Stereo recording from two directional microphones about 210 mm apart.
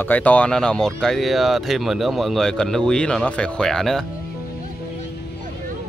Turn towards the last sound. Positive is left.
turn(degrees=0)  # may be behind; listen again after turning